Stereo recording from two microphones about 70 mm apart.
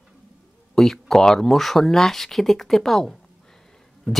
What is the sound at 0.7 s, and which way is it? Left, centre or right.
Speech, centre.